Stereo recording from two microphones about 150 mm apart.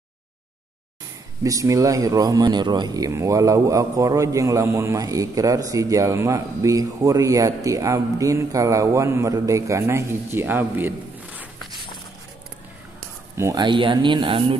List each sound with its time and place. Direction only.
1.4 s a man's voice: 20° right (ahead or behind)
13.4 s speech: 25° right (ahead or behind)